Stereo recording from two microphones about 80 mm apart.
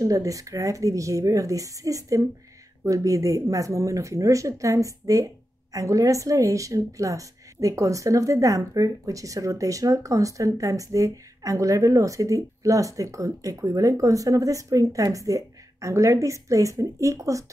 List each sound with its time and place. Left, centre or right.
0.0 s speech: right